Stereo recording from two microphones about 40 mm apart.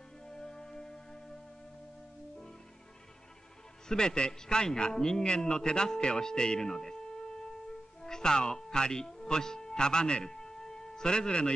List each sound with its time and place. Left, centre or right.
0.3 s music: centre
3.9 s a man's voice: left